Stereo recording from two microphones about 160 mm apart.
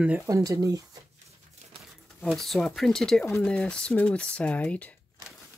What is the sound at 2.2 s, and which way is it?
Speech, centre (ahead or behind).